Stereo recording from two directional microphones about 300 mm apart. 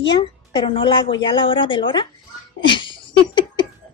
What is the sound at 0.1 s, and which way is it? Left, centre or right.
A woman's voice, centre.